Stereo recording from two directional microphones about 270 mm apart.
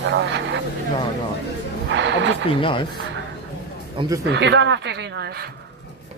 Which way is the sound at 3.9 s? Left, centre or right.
Centre.